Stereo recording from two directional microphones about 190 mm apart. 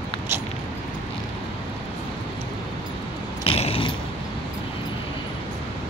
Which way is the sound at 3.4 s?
30° left (ahead or behind).